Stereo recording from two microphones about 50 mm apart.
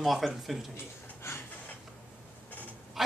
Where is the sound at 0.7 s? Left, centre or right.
Left.